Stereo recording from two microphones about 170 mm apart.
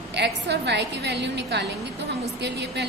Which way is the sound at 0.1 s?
80° right.